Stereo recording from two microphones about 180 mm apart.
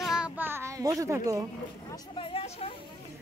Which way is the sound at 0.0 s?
5° right (ahead or behind).